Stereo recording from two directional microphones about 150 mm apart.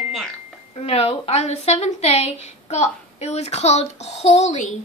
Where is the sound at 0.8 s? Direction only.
45° left (ahead or behind).